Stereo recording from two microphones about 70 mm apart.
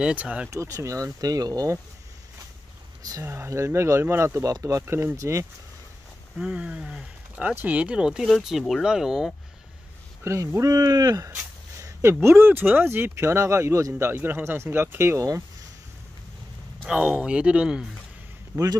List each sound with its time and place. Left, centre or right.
0.0 s speech: centre
0.5 s speech: right
3.3 s speech: right
4.3 s speech: right
6.3 s speech: centre
10.2 s speech: right
11.8 s speech: right
17.0 s speech: centre
18.5 s speech: right